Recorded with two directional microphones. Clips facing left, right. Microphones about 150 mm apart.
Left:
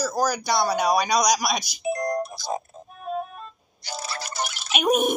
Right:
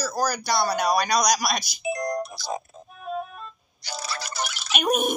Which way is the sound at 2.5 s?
35° left (ahead or behind).